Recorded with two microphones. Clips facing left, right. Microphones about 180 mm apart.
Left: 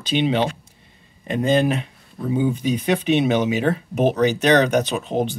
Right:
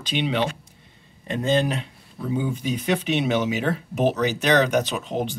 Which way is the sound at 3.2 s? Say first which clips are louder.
Left 4 dB; 15° left (ahead or behind).